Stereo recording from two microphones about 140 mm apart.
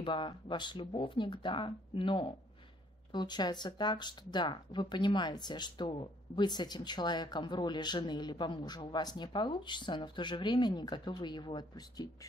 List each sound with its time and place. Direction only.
0.0 s speech: 35° left (ahead or behind)